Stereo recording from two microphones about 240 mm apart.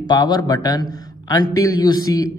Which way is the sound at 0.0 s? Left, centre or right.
Centre.